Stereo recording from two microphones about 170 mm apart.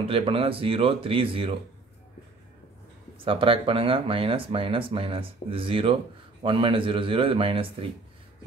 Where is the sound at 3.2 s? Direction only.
30° right (ahead or behind).